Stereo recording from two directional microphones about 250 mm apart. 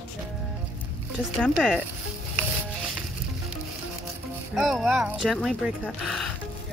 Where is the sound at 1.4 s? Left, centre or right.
Centre.